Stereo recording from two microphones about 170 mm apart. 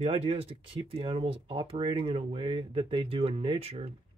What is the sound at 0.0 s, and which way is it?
Speech, 35° right (ahead or behind).